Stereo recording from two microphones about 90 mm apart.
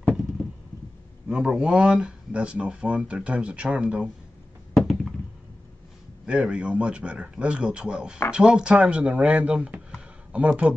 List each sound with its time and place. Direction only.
1.3 s speech: 10° right (ahead or behind)
4.7 s a sound: 5° right (ahead or behind)
6.2 s speech: 10° right (ahead or behind)